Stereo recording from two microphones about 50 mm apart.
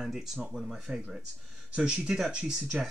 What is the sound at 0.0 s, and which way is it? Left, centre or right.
Speech, centre.